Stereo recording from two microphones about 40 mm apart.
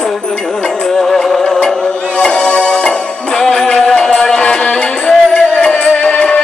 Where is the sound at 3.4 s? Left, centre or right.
Centre.